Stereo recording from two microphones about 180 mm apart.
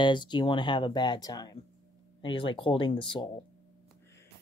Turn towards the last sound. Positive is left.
turn(degrees=25)  # may be behind; listen again after turning